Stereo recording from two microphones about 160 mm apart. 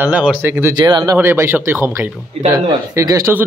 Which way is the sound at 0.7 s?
30° right (ahead or behind).